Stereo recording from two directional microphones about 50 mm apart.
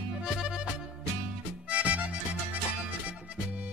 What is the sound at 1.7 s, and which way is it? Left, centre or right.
Music, right.